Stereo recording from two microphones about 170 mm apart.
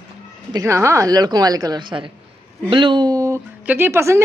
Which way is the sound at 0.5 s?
15° right (ahead or behind).